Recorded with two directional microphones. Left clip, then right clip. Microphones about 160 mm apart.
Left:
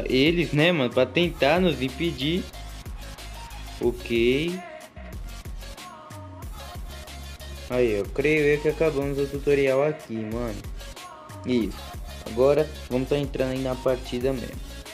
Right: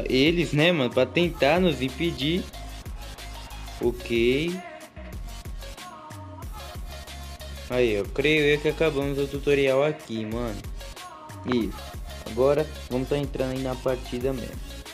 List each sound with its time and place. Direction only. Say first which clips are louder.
0.0 s speech: even; centre (ahead or behind)
3.8 s speech: left 1 dB; centre (ahead or behind)
7.7 s speech: even; centre (ahead or behind)
12.4 s speech: left 2 dB; 20° left (ahead or behind)
13.6 s speech: left 3 dB; centre (ahead or behind)